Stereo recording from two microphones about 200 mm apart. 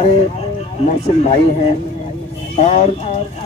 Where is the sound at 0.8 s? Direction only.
35° left (ahead or behind).